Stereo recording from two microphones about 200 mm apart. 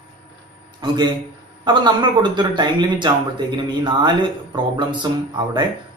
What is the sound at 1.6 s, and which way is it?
Speech, 20° right (ahead or behind).